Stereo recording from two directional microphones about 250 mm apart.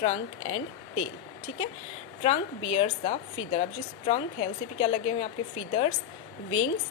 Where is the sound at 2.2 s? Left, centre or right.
Left.